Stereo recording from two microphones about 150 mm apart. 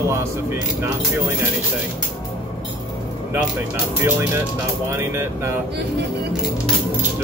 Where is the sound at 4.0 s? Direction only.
15° right (ahead or behind).